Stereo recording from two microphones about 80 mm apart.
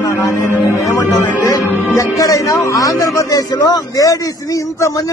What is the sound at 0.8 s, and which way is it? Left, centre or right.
Music, left.